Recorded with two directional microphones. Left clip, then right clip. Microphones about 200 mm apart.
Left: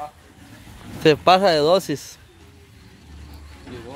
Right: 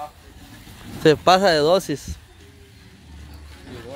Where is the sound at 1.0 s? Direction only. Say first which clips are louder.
Even; 15° right (ahead or behind); by 2.2 s 5° left (ahead or behind).